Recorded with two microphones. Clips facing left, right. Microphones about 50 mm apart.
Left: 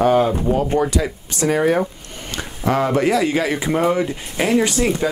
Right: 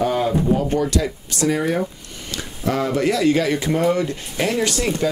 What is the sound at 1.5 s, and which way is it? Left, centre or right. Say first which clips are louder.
Speech: left 4 dB; left.